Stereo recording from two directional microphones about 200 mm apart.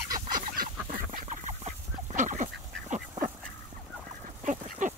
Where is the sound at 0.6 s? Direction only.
40° right (ahead or behind).